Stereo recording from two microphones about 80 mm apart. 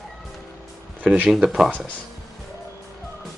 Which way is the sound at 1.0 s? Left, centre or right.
Centre.